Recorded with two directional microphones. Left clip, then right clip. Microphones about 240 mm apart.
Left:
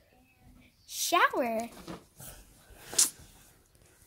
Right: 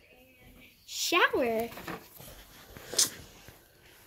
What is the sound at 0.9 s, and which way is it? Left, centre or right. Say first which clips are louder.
Speech: even; left.